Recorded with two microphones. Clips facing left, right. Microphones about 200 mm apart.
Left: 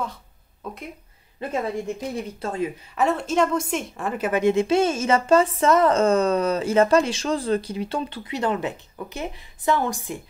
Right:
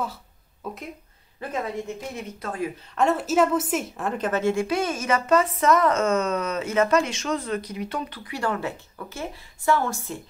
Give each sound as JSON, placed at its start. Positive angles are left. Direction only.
{"t": 0.6, "sound": "speech", "side_deg": -5}
{"t": 1.4, "sound": "a woman's voice", "side_deg": 25}
{"t": 3.0, "sound": "a woman's voice", "side_deg": 0}